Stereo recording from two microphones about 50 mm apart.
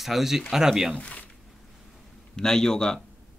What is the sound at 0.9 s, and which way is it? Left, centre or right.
Speech, left.